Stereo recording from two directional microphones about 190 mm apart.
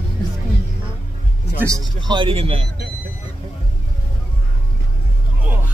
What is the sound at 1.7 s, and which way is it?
A man's voice, 20° right (ahead or behind).